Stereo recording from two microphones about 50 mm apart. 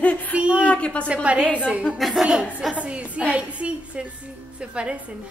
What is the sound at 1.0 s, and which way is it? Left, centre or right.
Speech, right.